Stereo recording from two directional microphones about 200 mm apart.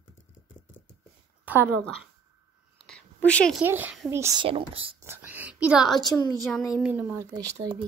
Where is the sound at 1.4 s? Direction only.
10° right (ahead or behind).